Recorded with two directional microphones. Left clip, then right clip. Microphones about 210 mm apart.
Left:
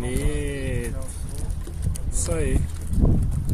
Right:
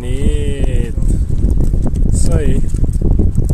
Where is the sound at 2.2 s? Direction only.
30° right (ahead or behind).